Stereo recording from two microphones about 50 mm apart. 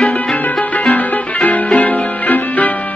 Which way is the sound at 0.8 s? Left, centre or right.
Left.